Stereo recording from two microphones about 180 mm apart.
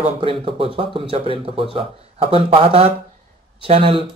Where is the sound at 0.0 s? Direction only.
30° right (ahead or behind).